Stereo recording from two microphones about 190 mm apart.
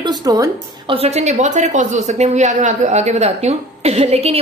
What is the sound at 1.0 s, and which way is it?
A woman's voice, 35° right (ahead or behind).